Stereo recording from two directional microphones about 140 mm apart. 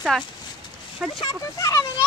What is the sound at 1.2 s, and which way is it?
Speech, 25° left (ahead or behind).